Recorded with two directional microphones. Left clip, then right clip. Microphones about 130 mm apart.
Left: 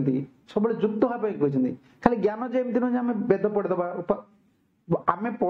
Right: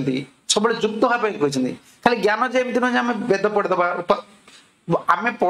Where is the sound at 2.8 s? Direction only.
40° left (ahead or behind).